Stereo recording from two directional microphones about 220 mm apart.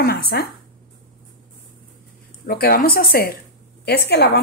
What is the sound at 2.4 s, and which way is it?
A woman's voice, 45° left (ahead or behind).